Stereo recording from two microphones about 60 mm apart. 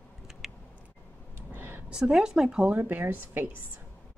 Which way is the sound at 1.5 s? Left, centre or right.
Right.